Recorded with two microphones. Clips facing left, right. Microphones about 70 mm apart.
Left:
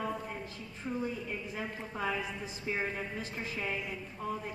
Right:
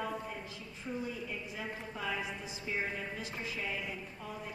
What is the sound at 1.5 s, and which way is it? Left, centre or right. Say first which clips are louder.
Speech: left 3 dB; left.